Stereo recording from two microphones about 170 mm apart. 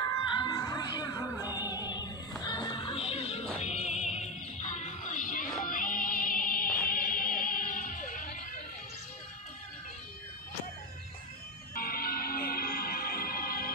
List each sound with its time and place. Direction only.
0.1 s music: 25° left (ahead or behind); by 8.4 s 50° left (ahead or behind)
11.7 s music: 60° left (ahead or behind)